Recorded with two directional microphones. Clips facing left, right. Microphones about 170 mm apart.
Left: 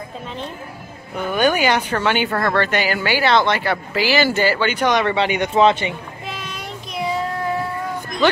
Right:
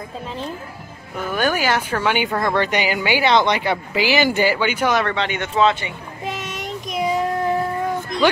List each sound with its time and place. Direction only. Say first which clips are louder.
1.1 s a woman's voice: left 3 dB; centre (ahead or behind)
5.1 s speech: left 4 dB; 10° left (ahead or behind)
8.2 s a woman's voice: even; 10° right (ahead or behind)